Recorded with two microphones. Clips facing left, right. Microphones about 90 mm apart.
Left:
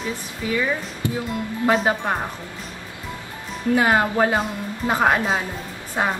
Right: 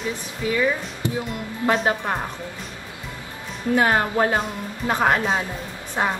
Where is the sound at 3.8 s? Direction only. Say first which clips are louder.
Left 1 dB; 15° left (ahead or behind).